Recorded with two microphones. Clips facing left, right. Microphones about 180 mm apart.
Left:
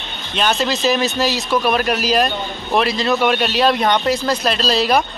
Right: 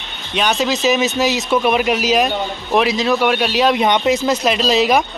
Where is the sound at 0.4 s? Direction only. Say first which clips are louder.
Right 1 dB; 10° right (ahead or behind).